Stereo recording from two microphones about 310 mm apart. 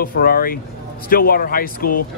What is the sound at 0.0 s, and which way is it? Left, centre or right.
Speech, left.